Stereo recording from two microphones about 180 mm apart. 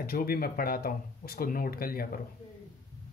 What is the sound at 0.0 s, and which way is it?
Speech, 55° left (ahead or behind).